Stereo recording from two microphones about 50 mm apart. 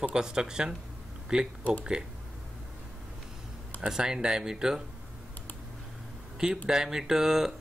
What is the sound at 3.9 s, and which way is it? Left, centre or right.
Speech, centre.